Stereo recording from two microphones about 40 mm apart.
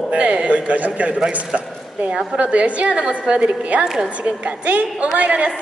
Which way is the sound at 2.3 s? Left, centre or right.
Right.